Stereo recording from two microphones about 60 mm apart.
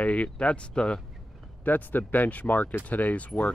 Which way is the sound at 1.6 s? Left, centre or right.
Left.